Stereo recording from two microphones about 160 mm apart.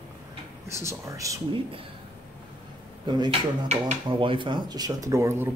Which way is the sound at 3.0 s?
25° right (ahead or behind).